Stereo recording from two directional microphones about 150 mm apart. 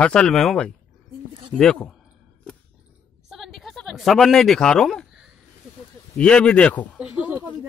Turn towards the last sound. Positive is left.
turn(degrees=-10)  # may be behind; listen again after turning